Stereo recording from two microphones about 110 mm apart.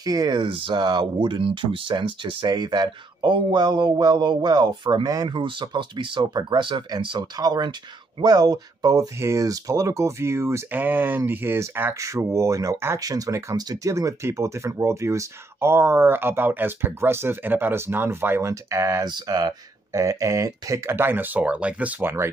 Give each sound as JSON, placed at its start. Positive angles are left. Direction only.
{"t": 0.0, "sound": "speech", "side_deg": -35}
{"t": 0.4, "sound": "speech", "side_deg": -50}
{"t": 19.0, "sound": "speech", "side_deg": -40}